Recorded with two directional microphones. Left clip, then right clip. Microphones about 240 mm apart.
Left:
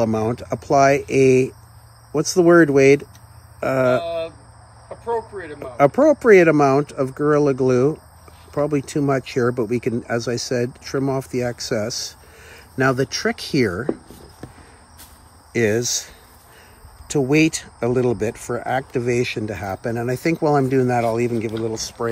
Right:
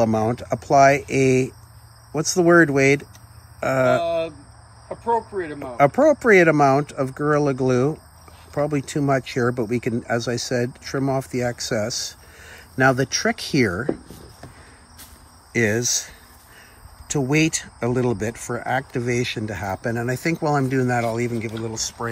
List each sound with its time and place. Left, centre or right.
0.0 s speech: centre
5.1 s speech: right
5.8 s speech: centre
15.5 s speech: centre